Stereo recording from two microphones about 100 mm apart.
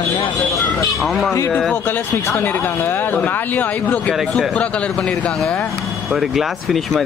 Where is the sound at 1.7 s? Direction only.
20° left (ahead or behind).